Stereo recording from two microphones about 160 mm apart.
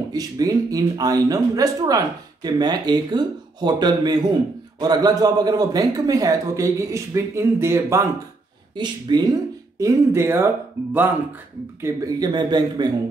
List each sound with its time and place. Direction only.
0.1 s speech: 25° right (ahead or behind)